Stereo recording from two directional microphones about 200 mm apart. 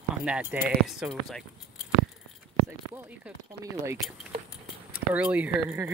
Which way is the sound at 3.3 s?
15° right (ahead or behind).